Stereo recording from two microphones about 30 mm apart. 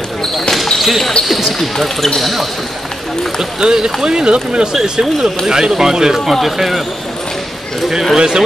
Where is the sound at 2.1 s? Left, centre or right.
Centre.